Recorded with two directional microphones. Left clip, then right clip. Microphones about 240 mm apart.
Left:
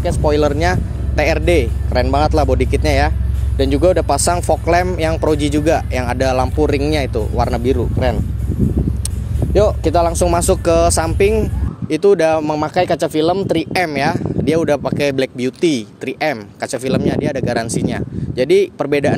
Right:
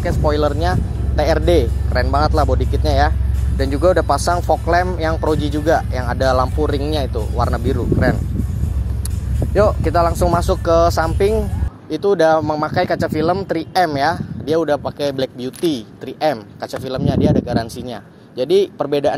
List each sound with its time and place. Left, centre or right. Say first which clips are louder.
0.0 s speech: left 2 dB; left
9.5 s speech: left 1 dB; left